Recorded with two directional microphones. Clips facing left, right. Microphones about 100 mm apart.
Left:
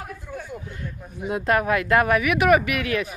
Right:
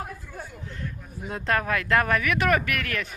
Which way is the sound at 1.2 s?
10° left (ahead or behind).